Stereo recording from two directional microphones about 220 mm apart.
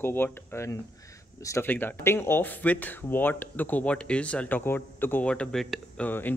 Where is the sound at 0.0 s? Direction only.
10° left (ahead or behind).